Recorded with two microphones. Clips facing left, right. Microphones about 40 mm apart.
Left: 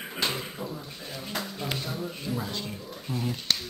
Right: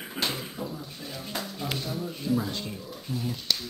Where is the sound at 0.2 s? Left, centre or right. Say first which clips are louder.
Left 1 dB; centre.